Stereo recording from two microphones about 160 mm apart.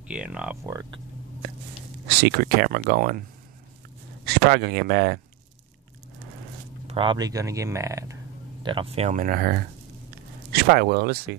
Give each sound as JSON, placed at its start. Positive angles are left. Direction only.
{"t": 0.1, "sound": "speech", "side_deg": -5}
{"t": 0.7, "sound": "speech", "side_deg": -30}
{"t": 2.0, "sound": "speech", "side_deg": -75}
{"t": 4.3, "sound": "speech", "side_deg": -80}
{"t": 6.9, "sound": "speech", "side_deg": -30}
{"t": 8.6, "sound": "speech", "side_deg": -35}
{"t": 10.5, "sound": "speech", "side_deg": -80}